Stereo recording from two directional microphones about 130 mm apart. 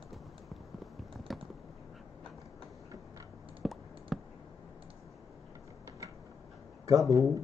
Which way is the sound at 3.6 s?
Centre (ahead or behind).